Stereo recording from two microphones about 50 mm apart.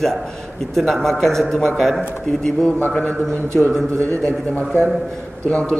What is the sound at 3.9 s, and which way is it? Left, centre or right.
Speech, right.